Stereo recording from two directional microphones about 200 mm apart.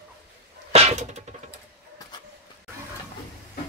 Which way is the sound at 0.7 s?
30° right (ahead or behind).